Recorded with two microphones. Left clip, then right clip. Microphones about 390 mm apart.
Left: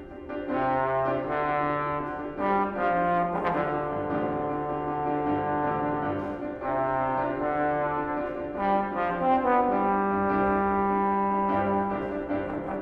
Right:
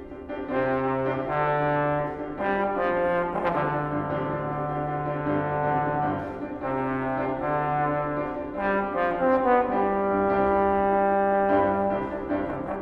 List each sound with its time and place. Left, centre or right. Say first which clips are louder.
1.3 s music: right 2 dB; left
2.4 s trombone: right 1 dB; left
8.6 s brass instrument: right 1 dB; left
10.5 s music: right 3 dB; left